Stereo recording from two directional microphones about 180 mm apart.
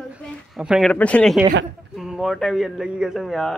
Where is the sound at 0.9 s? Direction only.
10° left (ahead or behind).